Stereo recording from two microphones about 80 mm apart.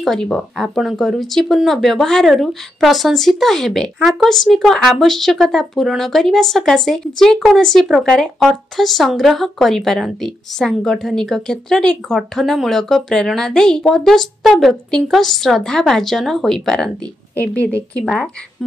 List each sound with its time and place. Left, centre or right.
0.0 s speech: centre
17.4 s a woman's voice: centre
18.0 s speech: centre